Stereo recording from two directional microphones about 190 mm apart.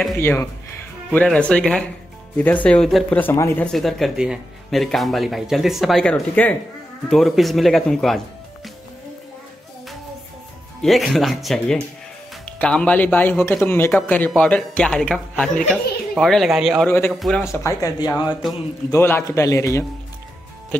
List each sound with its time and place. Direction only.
0.2 s speech: 10° left (ahead or behind)
3.6 s speech: centre (ahead or behind)
10.8 s speech: centre (ahead or behind)
16.8 s speech: 10° left (ahead or behind)
17.2 s speech: centre (ahead or behind)
17.5 s speech: 15° left (ahead or behind)